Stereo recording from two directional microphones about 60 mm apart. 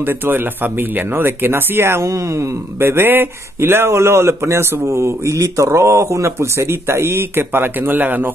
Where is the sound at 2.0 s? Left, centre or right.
Right.